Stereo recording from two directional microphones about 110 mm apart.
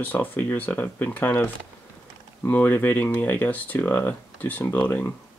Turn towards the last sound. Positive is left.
turn(degrees=15)  # may be behind; listen again after turning